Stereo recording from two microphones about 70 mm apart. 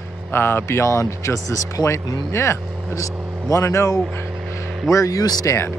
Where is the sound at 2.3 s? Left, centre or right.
Left.